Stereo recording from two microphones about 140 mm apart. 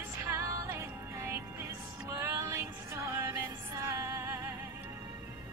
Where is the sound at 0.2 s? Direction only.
20° right (ahead or behind).